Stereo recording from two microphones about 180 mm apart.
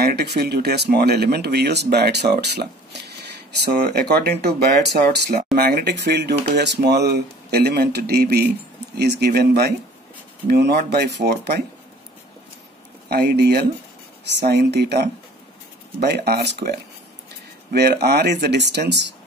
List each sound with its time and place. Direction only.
0.0 s speech: 65° right (ahead or behind)
13.1 s speech: 60° right (ahead or behind)